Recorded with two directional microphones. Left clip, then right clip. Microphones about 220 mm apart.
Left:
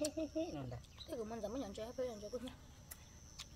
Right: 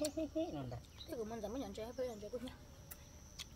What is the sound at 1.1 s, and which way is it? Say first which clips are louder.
Speech: even; 5° left (ahead or behind).